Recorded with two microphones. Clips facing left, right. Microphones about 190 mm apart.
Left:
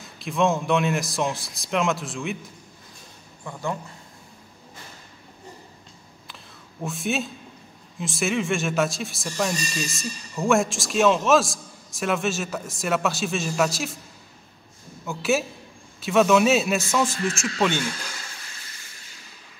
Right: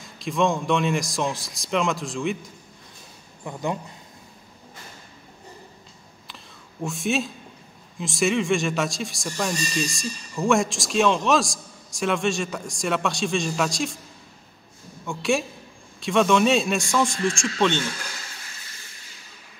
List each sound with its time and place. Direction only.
0.0 s speech: centre (ahead or behind)
3.4 s speech: 15° right (ahead or behind)
6.2 s a sound: centre (ahead or behind)
8.0 s speech: centre (ahead or behind)
15.0 s speech: 5° left (ahead or behind)